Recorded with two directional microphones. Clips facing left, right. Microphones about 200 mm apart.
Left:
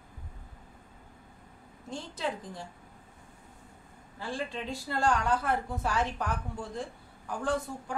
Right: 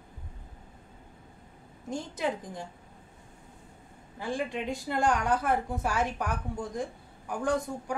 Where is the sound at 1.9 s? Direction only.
15° right (ahead or behind).